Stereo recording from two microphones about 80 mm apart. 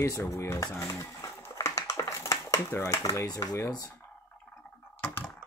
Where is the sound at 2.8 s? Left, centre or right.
Left.